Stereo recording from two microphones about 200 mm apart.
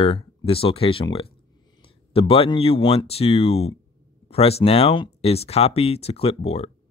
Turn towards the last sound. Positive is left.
turn(degrees=30)  # may be behind; listen again after turning